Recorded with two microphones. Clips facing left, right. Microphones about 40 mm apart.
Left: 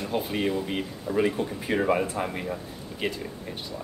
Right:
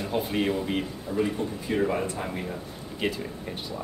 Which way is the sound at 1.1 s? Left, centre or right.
Left.